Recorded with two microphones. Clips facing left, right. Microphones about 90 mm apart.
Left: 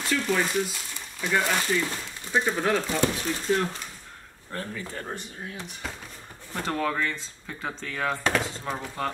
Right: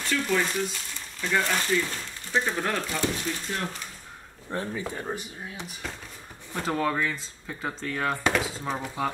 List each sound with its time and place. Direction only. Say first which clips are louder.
0.0 s speech: even; 5° left (ahead or behind)
4.5 s speech: right 3 dB; 20° right (ahead or behind)
4.9 s speech: right 2 dB; 5° right (ahead or behind)